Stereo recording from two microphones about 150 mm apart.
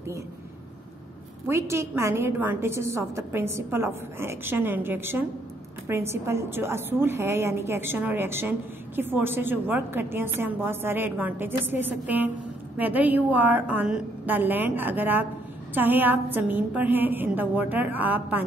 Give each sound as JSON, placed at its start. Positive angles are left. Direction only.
{"t": 1.5, "sound": "a woman's voice", "side_deg": -20}